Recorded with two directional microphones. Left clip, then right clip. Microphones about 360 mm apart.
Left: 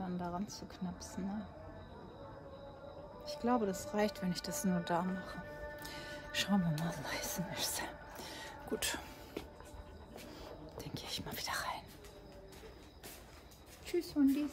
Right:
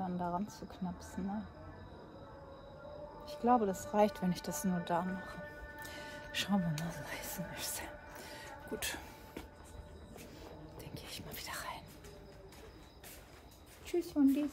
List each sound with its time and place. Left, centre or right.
0.0 s speech: centre
3.3 s speech: centre
5.9 s music: centre
10.4 s whispering: centre
13.8 s speech: centre